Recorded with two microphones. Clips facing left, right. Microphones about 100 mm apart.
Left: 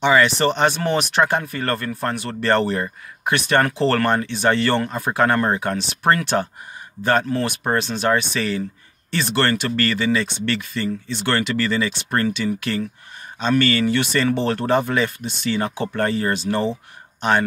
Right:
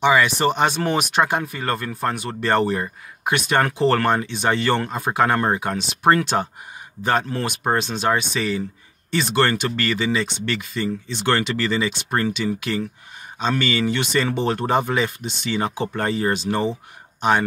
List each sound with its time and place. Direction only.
0.0 s speech: 10° right (ahead or behind)